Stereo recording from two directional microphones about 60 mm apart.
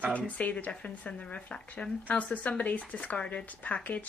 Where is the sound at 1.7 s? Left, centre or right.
Left.